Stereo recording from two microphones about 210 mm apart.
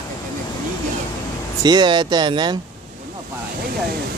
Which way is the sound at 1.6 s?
20° right (ahead or behind).